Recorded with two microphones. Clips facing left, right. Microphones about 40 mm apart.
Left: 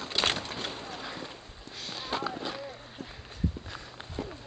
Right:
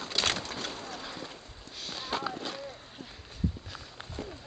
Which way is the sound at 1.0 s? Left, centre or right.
Centre.